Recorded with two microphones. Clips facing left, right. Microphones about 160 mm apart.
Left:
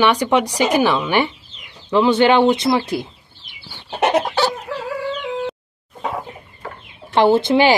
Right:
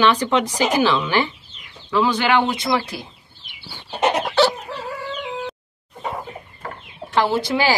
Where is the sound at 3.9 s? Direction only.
65° left (ahead or behind).